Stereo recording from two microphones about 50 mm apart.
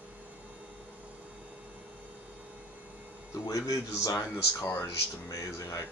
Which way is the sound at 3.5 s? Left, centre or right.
Left.